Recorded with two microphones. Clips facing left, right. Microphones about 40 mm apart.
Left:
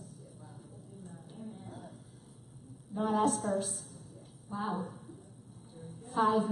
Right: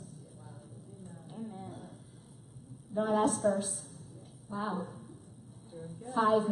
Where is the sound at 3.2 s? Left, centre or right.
Right.